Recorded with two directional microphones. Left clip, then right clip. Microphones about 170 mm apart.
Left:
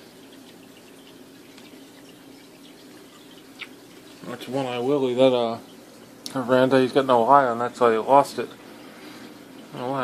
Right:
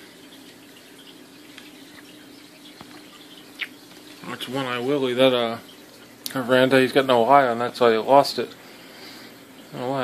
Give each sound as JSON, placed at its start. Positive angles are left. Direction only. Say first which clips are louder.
{"t": 3.6, "sound": "bird flight", "louder": "right 7 dB", "side_deg": 0}
{"t": 4.3, "sound": "speech", "louder": "right 1 dB", "side_deg": 0}
{"t": 9.8, "sound": "speech", "louder": "right 1 dB", "side_deg": -15}